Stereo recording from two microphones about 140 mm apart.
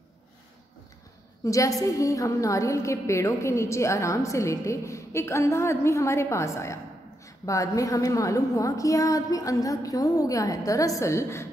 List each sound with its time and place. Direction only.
1.4 s a woman's voice: 25° left (ahead or behind)